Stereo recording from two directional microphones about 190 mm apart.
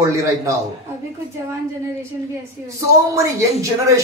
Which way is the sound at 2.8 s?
15° right (ahead or behind).